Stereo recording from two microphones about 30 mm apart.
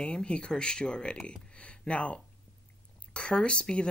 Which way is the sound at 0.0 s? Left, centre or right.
Left.